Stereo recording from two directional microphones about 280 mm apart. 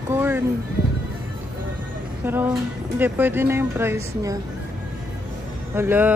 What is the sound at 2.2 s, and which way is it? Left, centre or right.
Speech, centre.